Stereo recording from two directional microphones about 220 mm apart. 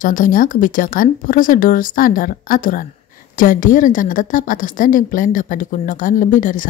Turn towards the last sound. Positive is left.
turn(degrees=35)  # may be behind; listen again after turning